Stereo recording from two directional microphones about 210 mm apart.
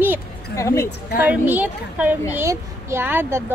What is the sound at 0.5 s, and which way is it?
Speech, 15° left (ahead or behind).